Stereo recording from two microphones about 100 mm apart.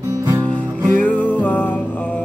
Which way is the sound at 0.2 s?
30° right (ahead or behind).